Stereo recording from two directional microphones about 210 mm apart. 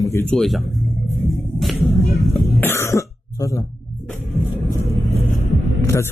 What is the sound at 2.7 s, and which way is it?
Throat clearing, 10° left (ahead or behind).